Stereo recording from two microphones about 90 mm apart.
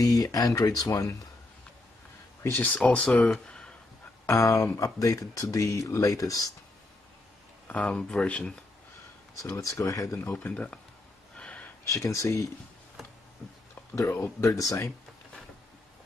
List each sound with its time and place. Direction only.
0.0 s speech: 40° left (ahead or behind)
2.4 s speech: 20° left (ahead or behind)
2.8 s speech: 10° left (ahead or behind)
3.3 s a sound: 10° left (ahead or behind)
4.3 s speech: 35° left (ahead or behind)
7.6 s speech: 15° left (ahead or behind)
9.4 s speech: 40° left (ahead or behind)
10.5 s speech: 15° left (ahead or behind)
11.3 s gasp: 15° left (ahead or behind)
11.9 s speech: 35° left (ahead or behind)
14.4 s speech: 35° left (ahead or behind)